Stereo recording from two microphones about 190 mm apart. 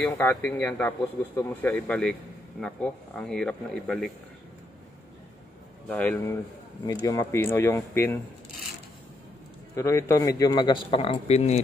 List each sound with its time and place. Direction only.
0.1 s a man's voice: 10° left (ahead or behind)
5.9 s a man's voice: 10° left (ahead or behind)
9.8 s a man's voice: 15° left (ahead or behind); by 11.6 s 35° left (ahead or behind)